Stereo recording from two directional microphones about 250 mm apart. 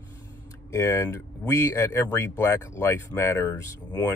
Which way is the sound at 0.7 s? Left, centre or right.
Centre.